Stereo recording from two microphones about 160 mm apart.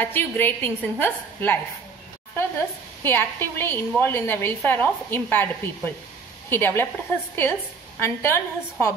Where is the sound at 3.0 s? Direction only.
15° left (ahead or behind).